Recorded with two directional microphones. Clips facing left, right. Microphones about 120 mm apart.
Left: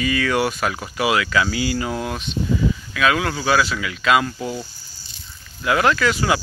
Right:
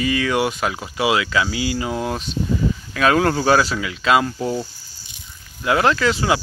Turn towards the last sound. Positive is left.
turn(degrees=-25)  # may be behind; listen again after turning